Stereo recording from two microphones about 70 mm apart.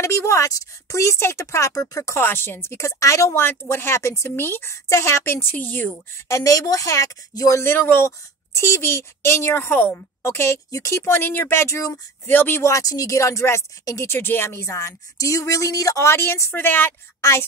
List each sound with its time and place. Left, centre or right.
0.0 s speech: left
2.1 s speech: left
4.4 s speech: left
6.1 s speech: left
7.7 s speech: left
12.3 s speech: left
12.7 s speech: left
16.1 s a woman's voice: left